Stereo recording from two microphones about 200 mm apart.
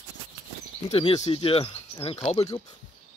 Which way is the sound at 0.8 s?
30° left (ahead or behind).